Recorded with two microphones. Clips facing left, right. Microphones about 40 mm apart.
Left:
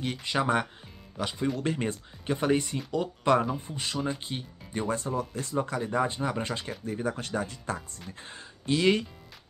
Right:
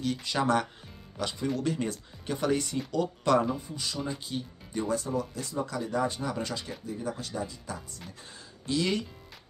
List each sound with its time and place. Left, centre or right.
0.0 s speech: left
1.6 s speech: left
3.5 s speech: left
6.8 s speech: left